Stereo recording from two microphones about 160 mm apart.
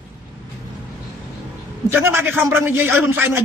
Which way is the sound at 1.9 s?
15° right (ahead or behind).